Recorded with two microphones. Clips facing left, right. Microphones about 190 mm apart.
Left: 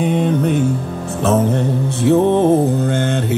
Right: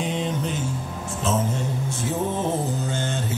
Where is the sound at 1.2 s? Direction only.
60° left (ahead or behind).